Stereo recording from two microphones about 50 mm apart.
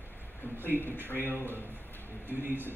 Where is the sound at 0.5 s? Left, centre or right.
Right.